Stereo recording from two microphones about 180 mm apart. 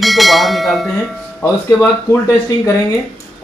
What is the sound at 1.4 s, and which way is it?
Speech, 15° left (ahead or behind).